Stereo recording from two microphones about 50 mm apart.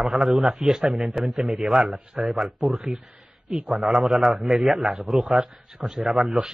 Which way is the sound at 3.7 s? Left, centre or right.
Centre.